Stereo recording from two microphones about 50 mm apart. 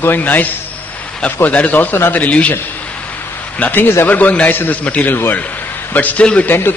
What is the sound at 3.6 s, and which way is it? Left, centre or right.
A man's voice, left.